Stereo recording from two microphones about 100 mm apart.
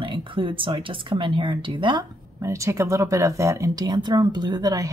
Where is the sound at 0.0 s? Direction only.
60° right (ahead or behind).